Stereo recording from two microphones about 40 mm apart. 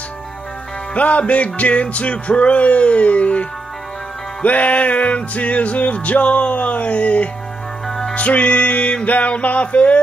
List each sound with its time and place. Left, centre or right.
0.9 s music: left